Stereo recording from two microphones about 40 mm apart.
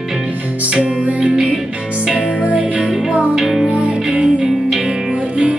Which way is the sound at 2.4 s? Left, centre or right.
Right.